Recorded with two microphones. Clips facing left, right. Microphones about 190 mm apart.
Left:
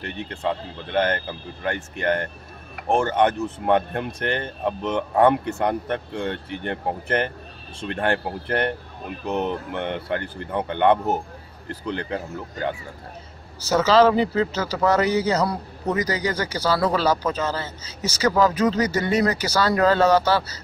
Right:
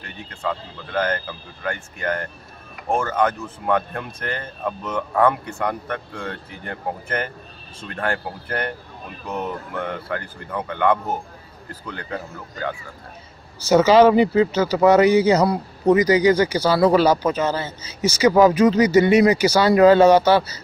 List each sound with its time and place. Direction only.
1.6 s speech: 30° left (ahead or behind)
13.7 s a man's voice: 10° right (ahead or behind)